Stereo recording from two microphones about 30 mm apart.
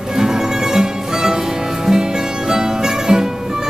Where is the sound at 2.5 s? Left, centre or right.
Right.